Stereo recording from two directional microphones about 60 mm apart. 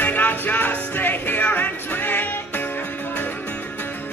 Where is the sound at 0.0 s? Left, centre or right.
Left.